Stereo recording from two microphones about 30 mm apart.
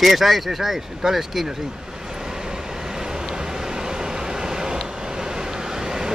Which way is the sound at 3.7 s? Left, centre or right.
Right.